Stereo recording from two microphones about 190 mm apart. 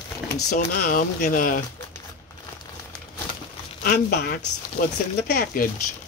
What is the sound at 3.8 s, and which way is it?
Speech, 55° left (ahead or behind).